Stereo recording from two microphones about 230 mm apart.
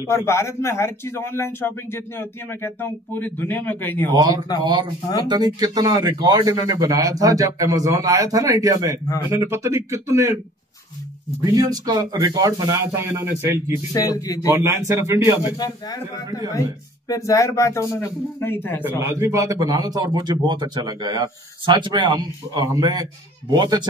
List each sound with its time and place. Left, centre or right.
0.0 s speech: centre
4.1 s a man's voice: centre
11.5 s a man's voice: centre
13.9 s speech: centre
14.5 s a man's voice: centre
15.5 s speech: centre
17.1 s speech: centre
18.9 s a man's voice: centre